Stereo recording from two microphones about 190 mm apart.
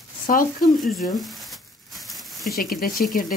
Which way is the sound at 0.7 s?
Centre (ahead or behind).